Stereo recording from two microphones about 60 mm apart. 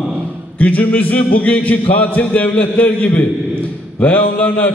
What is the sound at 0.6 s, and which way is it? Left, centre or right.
A man's voice, left.